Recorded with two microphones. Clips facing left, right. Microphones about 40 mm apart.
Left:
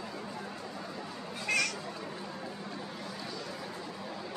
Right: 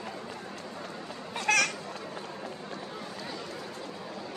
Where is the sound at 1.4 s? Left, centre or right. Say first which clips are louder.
Right 5 dB; right.